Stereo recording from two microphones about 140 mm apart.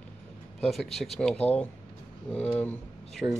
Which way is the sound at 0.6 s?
Centre (ahead or behind).